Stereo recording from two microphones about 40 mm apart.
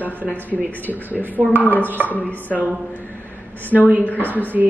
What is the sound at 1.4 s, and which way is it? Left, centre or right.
Speech, left.